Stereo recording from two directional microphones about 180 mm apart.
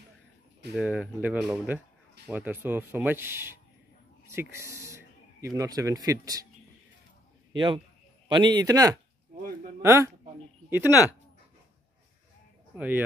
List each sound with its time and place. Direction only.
0.7 s sanding: 5° right (ahead or behind)
4.3 s speech: 15° right (ahead or behind)
7.5 s a man's voice: 25° right (ahead or behind)
9.8 s sanding: 15° right (ahead or behind)
12.7 s speech: 10° right (ahead or behind)